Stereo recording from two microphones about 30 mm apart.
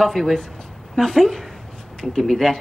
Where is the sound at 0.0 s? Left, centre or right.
Centre.